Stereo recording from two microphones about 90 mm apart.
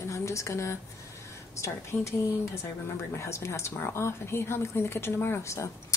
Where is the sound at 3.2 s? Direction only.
30° left (ahead or behind).